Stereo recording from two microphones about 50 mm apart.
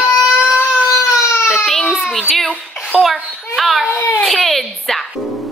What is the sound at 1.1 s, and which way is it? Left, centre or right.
Baby cry, left.